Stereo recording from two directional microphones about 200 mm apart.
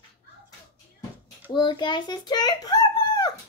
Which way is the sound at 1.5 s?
20° left (ahead or behind).